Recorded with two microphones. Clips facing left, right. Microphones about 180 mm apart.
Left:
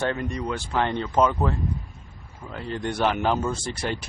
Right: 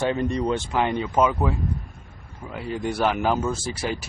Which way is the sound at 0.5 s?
15° right (ahead or behind).